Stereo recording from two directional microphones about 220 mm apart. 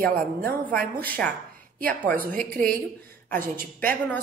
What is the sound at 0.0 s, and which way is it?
Speech, 40° right (ahead or behind).